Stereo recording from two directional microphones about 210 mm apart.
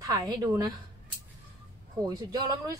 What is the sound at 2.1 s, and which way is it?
Speech, 15° right (ahead or behind).